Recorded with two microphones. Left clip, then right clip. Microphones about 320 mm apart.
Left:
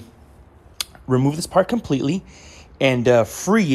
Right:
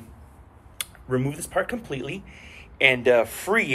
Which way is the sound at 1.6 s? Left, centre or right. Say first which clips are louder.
Left 9 dB; centre.